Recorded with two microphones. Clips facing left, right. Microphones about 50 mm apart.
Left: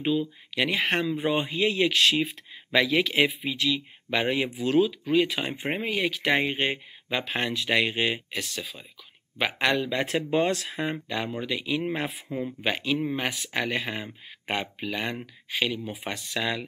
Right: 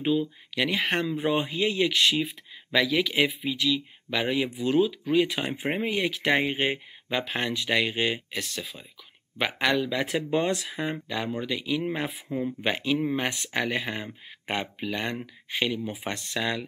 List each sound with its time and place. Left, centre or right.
0.0 s a man's voice: centre
2.0 s a man's voice: centre